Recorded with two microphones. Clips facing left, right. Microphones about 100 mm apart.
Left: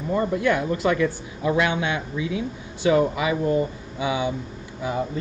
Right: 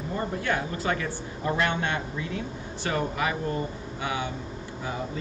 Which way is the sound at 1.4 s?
90° left.